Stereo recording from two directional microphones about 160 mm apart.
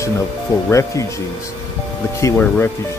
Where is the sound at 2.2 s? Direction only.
15° left (ahead or behind).